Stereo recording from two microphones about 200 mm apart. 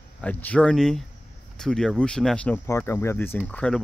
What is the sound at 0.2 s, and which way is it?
Speech, 5° left (ahead or behind).